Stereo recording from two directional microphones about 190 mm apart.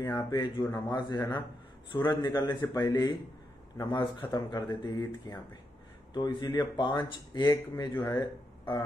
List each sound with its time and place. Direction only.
0.0 s speech: 20° left (ahead or behind)